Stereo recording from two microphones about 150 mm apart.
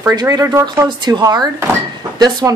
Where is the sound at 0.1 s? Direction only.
25° right (ahead or behind).